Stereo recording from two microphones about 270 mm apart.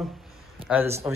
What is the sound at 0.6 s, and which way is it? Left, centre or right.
Speech, centre.